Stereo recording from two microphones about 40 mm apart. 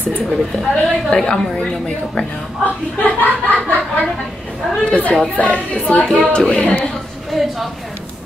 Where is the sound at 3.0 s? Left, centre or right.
Left.